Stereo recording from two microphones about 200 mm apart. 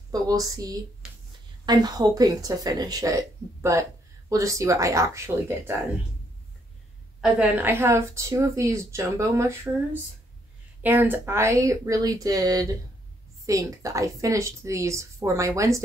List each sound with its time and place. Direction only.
0.1 s speech: 20° right (ahead or behind)
7.2 s speech: 5° right (ahead or behind)
10.8 s speech: 10° right (ahead or behind)